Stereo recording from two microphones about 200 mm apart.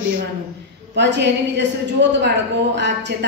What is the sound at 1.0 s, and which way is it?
A woman's voice, 60° right (ahead or behind).